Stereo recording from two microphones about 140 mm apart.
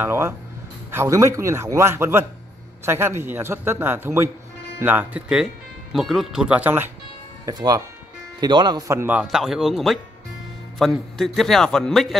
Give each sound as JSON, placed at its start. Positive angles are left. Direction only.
{"t": 0.0, "sound": "a man's voice", "side_deg": -15}
{"t": 7.4, "sound": "a man's voice", "side_deg": -25}